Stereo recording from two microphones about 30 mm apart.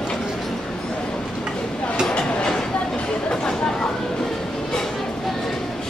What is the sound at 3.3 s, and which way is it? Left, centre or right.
Chatter, left.